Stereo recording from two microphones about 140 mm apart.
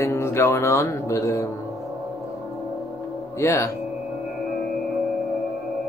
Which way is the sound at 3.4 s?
20° left (ahead or behind).